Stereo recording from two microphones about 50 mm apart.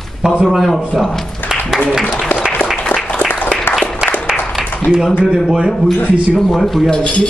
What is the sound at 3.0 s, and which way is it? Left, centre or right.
Applause, left.